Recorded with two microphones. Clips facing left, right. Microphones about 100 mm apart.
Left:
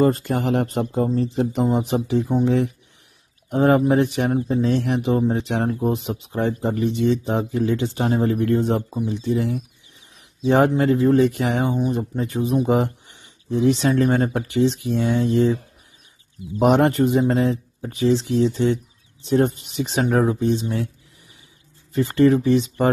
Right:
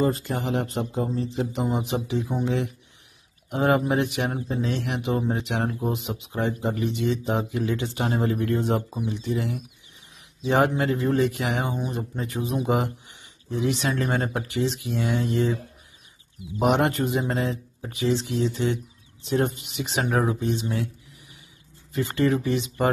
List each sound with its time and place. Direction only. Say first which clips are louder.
0.0 s speech: left 6 dB; 50° left (ahead or behind); by 15.5 s 35° left (ahead or behind)
16.6 s speech: left 5 dB; 40° left (ahead or behind)
21.9 s speech: left 7 dB; 35° left (ahead or behind)